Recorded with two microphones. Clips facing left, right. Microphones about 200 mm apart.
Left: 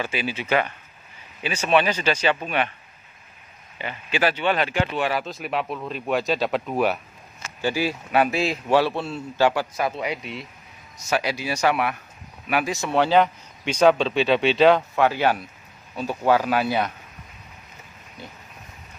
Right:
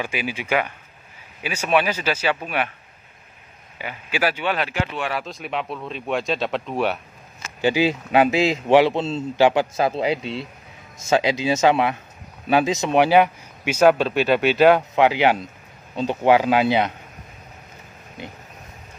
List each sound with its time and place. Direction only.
0.0 s speech: 10° right (ahead or behind)
3.7 s speech: 10° right (ahead or behind)
7.6 s a man's voice: 20° right (ahead or behind)
15.0 s a man's voice: 15° right (ahead or behind)
18.2 s a man's voice: 20° right (ahead or behind)